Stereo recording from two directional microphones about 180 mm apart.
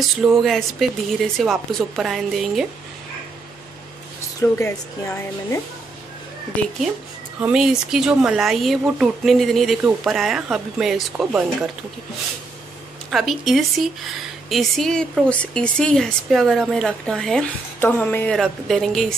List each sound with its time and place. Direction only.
0.2 s a woman's voice: centre (ahead or behind)
4.4 s speech: 15° left (ahead or behind)
7.4 s a woman's voice: 5° right (ahead or behind)
13.1 s a woman's voice: centre (ahead or behind)